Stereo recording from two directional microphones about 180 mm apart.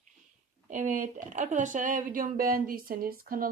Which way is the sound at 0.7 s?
45° right (ahead or behind).